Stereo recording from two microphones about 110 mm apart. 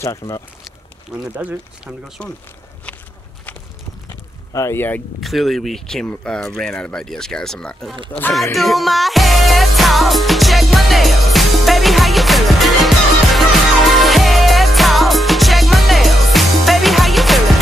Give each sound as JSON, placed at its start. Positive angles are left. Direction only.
{"t": 0.2, "sound": "speech", "side_deg": 30}
{"t": 1.1, "sound": "speech", "side_deg": -10}
{"t": 2.2, "sound": "speech", "side_deg": 10}
{"t": 4.5, "sound": "speech", "side_deg": 25}
{"t": 5.2, "sound": "speech", "side_deg": 0}
{"t": 8.1, "sound": "speech", "side_deg": 15}
{"t": 8.5, "sound": "music", "side_deg": 0}